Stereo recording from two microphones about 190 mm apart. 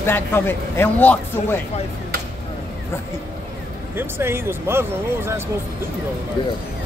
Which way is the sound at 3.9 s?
10° right (ahead or behind).